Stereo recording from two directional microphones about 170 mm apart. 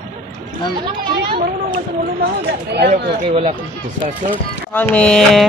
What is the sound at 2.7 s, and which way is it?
Speech, 75° right (ahead or behind).